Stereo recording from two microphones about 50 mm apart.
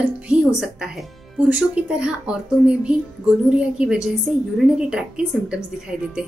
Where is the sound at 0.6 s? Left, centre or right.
Centre.